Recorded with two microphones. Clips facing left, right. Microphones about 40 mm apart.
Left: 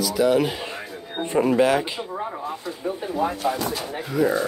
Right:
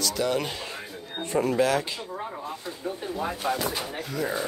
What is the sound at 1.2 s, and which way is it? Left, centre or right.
Speech, left.